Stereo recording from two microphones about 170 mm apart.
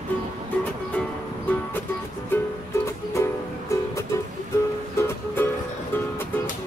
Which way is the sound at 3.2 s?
15° left (ahead or behind).